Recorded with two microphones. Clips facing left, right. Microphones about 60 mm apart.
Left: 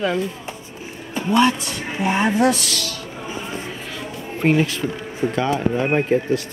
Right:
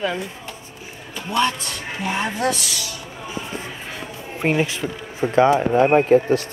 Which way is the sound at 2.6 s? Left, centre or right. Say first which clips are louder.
Left 3 dB; centre.